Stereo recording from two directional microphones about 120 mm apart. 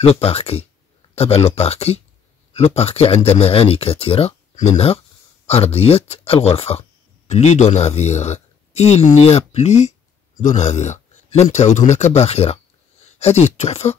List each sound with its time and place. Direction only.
0.0 s speech: 60° left (ahead or behind)
7.2 s speech: 70° left (ahead or behind)